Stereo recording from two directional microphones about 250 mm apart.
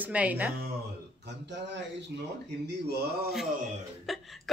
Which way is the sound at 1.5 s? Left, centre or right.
Right.